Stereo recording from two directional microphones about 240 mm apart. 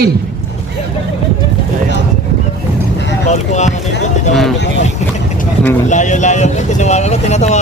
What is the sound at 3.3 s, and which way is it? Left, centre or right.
Speech, left.